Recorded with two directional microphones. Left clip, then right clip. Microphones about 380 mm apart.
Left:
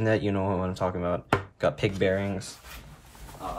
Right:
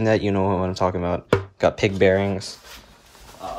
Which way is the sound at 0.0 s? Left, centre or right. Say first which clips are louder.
Right 6 dB; centre.